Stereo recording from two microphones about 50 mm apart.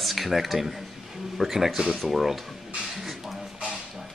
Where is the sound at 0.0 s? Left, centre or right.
Centre.